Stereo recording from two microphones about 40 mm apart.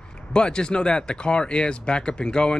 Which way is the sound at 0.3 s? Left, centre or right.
Left.